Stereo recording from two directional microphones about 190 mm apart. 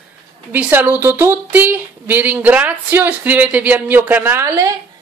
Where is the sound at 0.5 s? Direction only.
10° right (ahead or behind).